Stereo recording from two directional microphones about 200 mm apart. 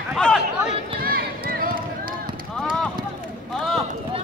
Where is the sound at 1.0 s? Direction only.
45° right (ahead or behind).